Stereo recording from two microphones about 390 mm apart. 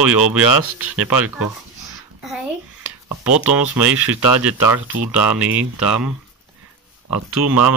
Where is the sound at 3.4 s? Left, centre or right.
Centre.